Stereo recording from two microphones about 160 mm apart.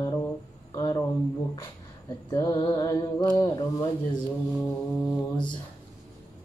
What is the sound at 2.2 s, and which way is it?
Mantra, 25° left (ahead or behind).